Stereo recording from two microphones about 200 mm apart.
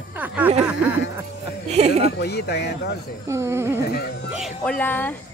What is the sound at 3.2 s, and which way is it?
Speech, 15° right (ahead or behind).